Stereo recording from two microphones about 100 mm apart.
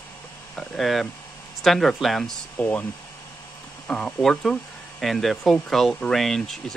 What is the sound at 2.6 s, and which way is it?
Speech, 20° left (ahead or behind).